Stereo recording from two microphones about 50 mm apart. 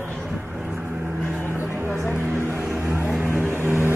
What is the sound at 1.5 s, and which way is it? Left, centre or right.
Music, right.